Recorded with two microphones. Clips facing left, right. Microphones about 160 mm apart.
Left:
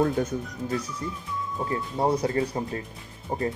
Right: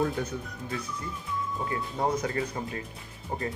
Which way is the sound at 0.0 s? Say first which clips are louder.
Left 5 dB; 45° left (ahead or behind).